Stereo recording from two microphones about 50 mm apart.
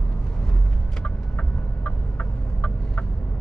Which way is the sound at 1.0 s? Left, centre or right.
Left.